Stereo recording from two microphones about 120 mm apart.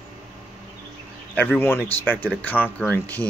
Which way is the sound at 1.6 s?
15° left (ahead or behind).